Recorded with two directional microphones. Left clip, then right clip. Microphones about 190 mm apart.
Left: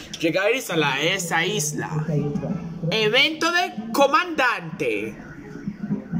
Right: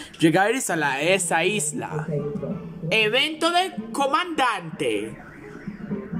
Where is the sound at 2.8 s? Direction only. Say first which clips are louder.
Left 1 dB; 5° right (ahead or behind).